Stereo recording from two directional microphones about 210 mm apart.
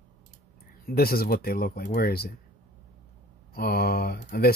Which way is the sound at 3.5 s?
45° left (ahead or behind).